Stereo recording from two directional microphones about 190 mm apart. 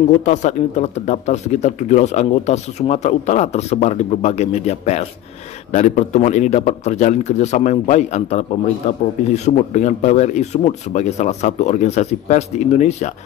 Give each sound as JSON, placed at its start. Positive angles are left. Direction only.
{"t": 0.2, "sound": "speech", "side_deg": 40}